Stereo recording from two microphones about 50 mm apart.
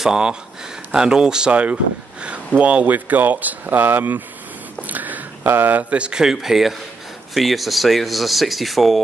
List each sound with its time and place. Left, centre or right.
0.0 s speech: centre
1.5 s speech: right
4.8 s a sound: right
6.2 s speech: centre